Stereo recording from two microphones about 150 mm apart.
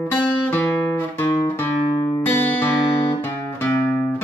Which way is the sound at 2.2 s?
10° left (ahead or behind).